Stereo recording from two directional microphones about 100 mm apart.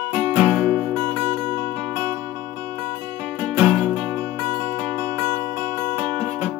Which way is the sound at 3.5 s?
5° left (ahead or behind).